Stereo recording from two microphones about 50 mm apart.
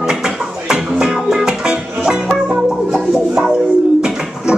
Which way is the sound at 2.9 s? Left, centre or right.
Centre.